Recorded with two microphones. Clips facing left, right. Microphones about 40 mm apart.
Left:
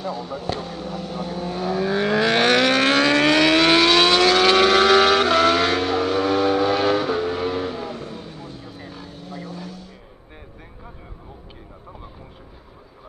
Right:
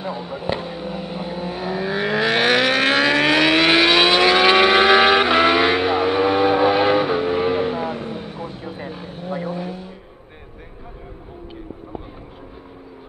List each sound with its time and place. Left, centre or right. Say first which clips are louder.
0.0 s vehicle: right 1 dB; right